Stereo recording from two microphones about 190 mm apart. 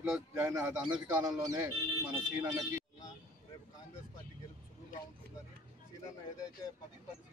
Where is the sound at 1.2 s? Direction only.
20° right (ahead or behind).